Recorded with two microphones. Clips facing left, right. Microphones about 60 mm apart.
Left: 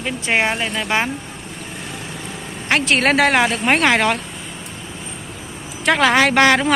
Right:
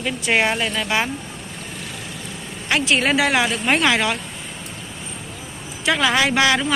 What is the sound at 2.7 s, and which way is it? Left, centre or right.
A woman's voice, left.